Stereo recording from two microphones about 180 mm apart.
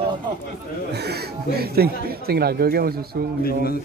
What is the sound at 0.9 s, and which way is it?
Speech, 60° right (ahead or behind).